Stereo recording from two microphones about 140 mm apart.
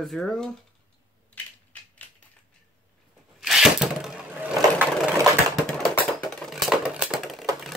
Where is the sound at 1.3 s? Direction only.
10° left (ahead or behind).